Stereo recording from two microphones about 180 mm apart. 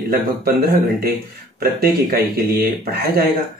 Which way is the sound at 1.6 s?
55° right (ahead or behind).